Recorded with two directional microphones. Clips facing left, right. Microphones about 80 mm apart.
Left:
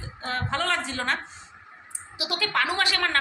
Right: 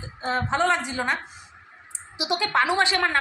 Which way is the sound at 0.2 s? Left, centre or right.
Centre.